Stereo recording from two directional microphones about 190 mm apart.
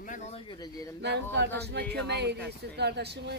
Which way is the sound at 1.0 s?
65° right (ahead or behind).